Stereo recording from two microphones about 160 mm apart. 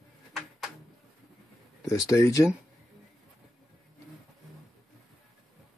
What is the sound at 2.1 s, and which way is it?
Speech, 20° left (ahead or behind).